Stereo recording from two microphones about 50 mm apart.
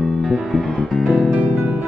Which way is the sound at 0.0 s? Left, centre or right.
Centre.